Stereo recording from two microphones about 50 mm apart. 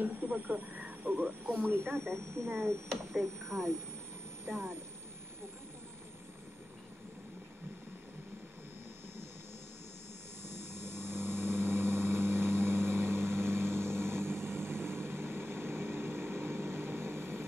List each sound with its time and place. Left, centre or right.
0.0 s speech: right
2.9 s speech: centre
4.5 s speech: right
10.4 s vehicle: right